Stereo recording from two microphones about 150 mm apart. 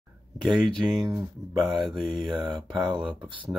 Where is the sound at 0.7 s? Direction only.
Centre (ahead or behind).